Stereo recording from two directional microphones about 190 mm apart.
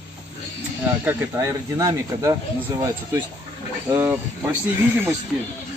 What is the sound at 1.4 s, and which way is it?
Speech, 20° right (ahead or behind).